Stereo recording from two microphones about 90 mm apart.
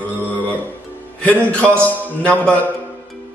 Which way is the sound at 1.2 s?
15° left (ahead or behind).